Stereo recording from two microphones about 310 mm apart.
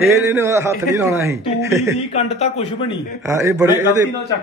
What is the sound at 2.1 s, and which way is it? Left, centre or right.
Speech, centre.